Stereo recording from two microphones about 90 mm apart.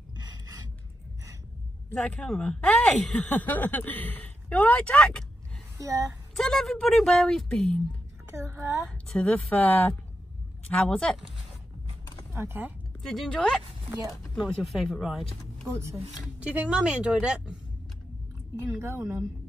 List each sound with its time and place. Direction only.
0.1 s filing: 45° right (ahead or behind)
2.0 s speech: 10° left (ahead or behind)
5.8 s speech: 40° right (ahead or behind)
6.3 s speech: 5° left (ahead or behind)
8.3 s speech: 30° right (ahead or behind)
9.1 s speech: 15° left (ahead or behind)
12.3 s speech: 25° right (ahead or behind)
13.0 s speech: 5° left (ahead or behind)
15.7 s speech: 30° right (ahead or behind)
16.3 s a woman's voice: 15° right (ahead or behind)
18.7 s speech: 35° right (ahead or behind)